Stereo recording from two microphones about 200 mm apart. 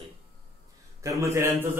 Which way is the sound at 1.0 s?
15° right (ahead or behind).